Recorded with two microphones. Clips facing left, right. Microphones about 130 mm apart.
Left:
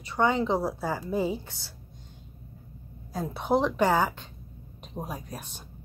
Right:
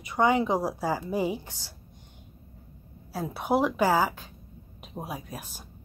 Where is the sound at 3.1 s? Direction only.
5° right (ahead or behind).